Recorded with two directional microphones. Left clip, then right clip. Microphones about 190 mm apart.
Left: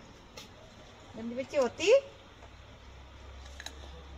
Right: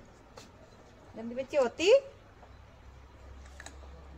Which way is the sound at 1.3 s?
45° right (ahead or behind).